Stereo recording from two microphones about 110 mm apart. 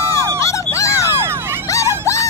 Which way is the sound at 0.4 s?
30° left (ahead or behind).